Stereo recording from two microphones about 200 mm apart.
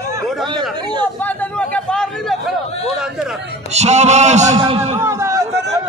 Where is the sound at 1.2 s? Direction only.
10° left (ahead or behind).